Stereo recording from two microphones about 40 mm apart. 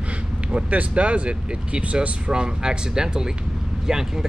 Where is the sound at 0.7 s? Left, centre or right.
Right.